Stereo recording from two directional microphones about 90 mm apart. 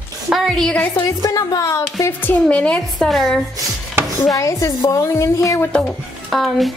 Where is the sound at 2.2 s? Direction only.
20° left (ahead or behind); by 3.4 s centre (ahead or behind).